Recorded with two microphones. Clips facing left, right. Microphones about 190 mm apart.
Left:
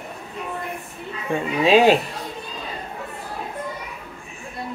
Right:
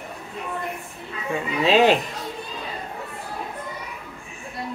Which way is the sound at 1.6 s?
10° left (ahead or behind).